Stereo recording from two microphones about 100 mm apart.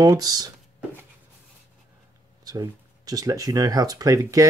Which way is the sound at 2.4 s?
40° right (ahead or behind).